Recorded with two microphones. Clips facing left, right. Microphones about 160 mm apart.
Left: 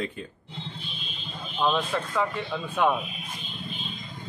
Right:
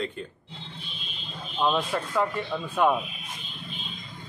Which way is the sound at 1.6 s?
10° right (ahead or behind).